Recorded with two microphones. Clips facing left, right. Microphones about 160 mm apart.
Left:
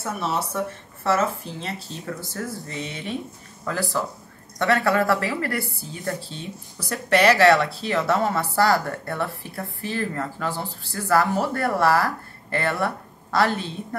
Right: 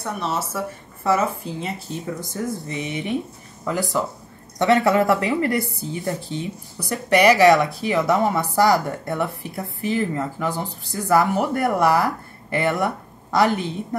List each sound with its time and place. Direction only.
0.0 s a woman's voice: centre (ahead or behind); by 13.7 s 15° right (ahead or behind)